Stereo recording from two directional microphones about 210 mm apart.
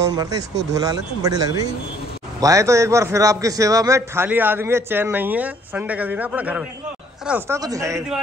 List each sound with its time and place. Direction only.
0.7 s a man's voice: 15° right (ahead or behind)